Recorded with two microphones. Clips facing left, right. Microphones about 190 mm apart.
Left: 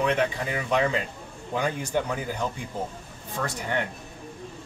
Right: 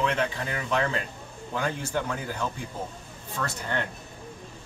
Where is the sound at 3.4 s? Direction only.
15° left (ahead or behind).